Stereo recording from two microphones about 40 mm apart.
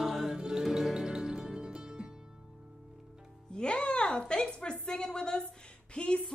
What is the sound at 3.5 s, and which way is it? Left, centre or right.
Music, left.